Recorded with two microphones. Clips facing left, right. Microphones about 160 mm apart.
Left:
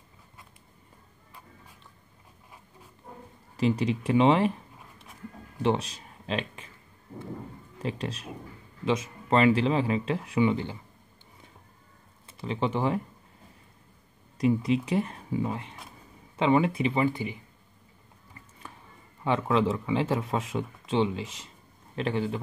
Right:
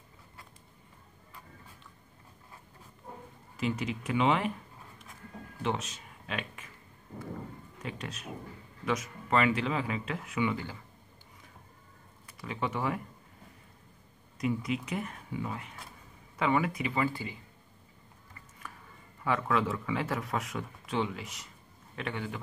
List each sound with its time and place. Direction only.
3.5 s speech: 35° left (ahead or behind)
5.6 s speech: 30° left (ahead or behind)
7.8 s speech: 30° left (ahead or behind)
12.4 s speech: 30° left (ahead or behind)
14.4 s speech: 30° left (ahead or behind)
19.2 s speech: 25° left (ahead or behind)